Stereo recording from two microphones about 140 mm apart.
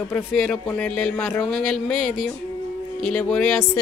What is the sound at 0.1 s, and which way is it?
A man's voice, 5° left (ahead or behind).